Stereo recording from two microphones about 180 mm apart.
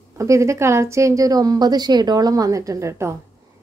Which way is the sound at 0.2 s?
15° right (ahead or behind).